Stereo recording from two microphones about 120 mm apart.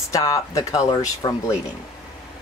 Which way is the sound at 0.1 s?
30° left (ahead or behind).